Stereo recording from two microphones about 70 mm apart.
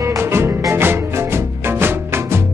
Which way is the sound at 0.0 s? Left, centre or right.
Right.